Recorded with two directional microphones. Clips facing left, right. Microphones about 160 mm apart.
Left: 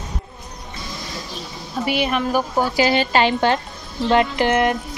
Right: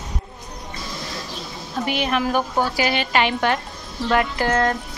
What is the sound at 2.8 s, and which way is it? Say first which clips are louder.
A woman's voice: left 6 dB; 30° left (ahead or behind).